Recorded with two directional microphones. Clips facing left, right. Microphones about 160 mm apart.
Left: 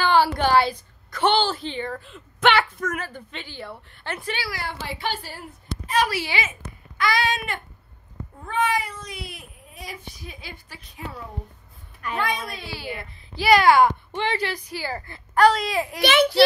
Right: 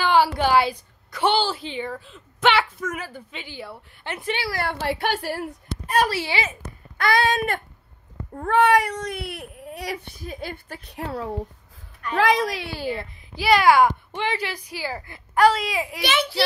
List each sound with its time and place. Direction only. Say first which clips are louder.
0.0 s a woman's voice: even; 5° right (ahead or behind); by 4.5 s 20° right (ahead or behind)
4.5 s speech: right 6 dB; 55° right (ahead or behind)
7.0 s a sound: right 3 dB; 55° right (ahead or behind)
8.4 s speech: right 7 dB; 65° right (ahead or behind)
12.2 s a woman's voice: right 9 dB; 90° right
13.4 s speech: even; 5° right (ahead or behind)
16.0 s a child's voice: left 6 dB; 65° left (ahead or behind)